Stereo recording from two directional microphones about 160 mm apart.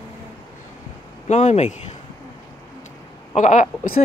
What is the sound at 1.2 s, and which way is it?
Speech, 45° left (ahead or behind).